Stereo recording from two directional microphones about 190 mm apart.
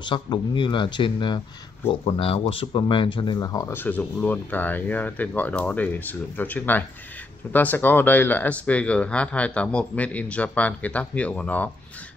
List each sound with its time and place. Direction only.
0.0 s speech: 25° left (ahead or behind); by 11.7 s 10° left (ahead or behind)